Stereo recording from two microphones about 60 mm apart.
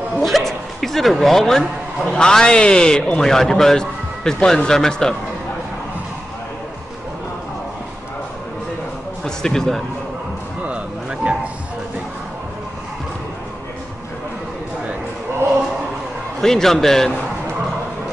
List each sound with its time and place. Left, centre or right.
0.2 s speech: centre
9.2 s speech: centre
10.6 s music: centre
16.3 s speech: centre